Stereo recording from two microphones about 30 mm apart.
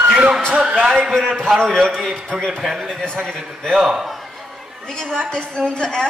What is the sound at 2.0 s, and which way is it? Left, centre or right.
Speech, centre.